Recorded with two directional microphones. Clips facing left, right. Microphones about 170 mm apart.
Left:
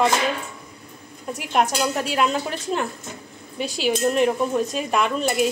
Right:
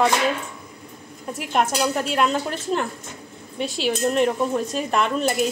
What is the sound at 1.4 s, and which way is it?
Speech, centre (ahead or behind).